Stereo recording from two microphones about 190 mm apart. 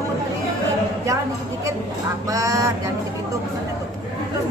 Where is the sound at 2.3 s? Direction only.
15° right (ahead or behind).